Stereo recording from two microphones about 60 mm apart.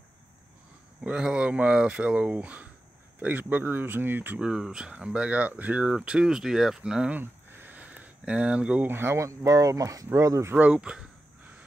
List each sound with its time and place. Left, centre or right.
1.0 s speech: centre; by 4.4 s right
4.4 s speech: centre
7.1 s a sound: right
8.8 s speech: right
9.2 s speech: right
10.1 s speech: right
10.5 s speech: centre